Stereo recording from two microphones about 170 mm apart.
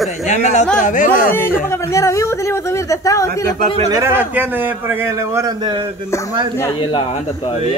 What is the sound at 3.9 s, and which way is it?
A man's voice, 15° right (ahead or behind).